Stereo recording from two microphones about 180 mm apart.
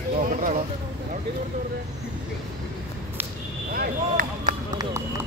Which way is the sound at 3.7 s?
55° right (ahead or behind).